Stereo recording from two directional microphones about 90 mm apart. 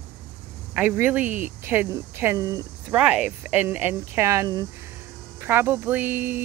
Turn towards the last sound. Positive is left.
turn(degrees=-20)  # may be behind; listen again after turning